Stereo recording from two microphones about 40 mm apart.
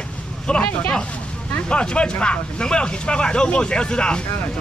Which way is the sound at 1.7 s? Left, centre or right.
Left.